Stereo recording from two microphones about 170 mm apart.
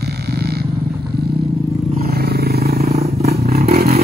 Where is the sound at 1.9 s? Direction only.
65° right (ahead or behind).